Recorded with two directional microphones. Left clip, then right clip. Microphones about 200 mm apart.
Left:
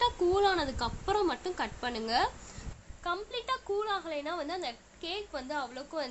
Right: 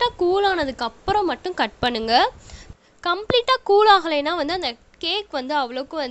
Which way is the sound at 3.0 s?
55° right (ahead or behind).